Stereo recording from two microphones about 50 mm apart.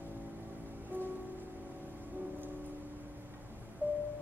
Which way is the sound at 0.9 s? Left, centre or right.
Right.